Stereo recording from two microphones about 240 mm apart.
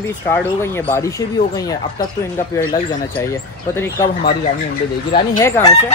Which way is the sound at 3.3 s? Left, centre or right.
Centre.